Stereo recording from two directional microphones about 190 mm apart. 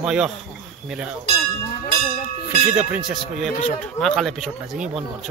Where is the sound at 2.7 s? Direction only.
5° right (ahead or behind).